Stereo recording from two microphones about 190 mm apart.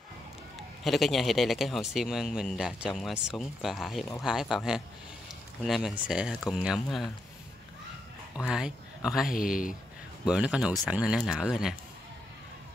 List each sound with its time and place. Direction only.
0.8 s a man's voice: centre (ahead or behind)
8.5 s speech: 5° right (ahead or behind)
9.3 s a man's voice: 45° left (ahead or behind)
10.2 s a man's voice: 5° right (ahead or behind)